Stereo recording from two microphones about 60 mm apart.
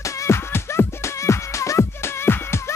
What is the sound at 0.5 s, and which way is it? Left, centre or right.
Music, left.